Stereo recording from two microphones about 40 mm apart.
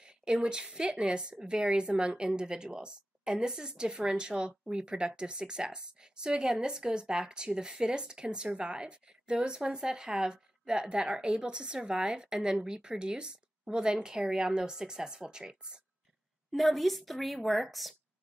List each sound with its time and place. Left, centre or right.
0.0 s a woman's voice: right
16.5 s a woman's voice: centre